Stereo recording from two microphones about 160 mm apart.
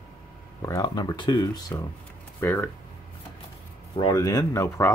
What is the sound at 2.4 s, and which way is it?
Coin, 15° left (ahead or behind).